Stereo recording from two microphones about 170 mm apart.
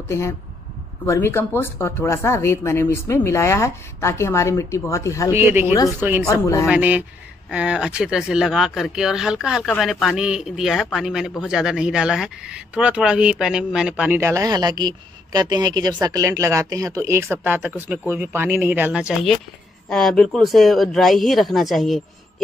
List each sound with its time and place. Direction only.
1.0 s speech: 15° left (ahead or behind)
5.3 s a man's voice: 15° right (ahead or behind)
6.4 s speech: 20° left (ahead or behind)
6.7 s a man's voice: 10° right (ahead or behind)